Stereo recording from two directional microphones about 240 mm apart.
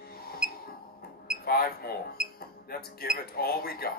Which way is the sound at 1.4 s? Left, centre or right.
Left.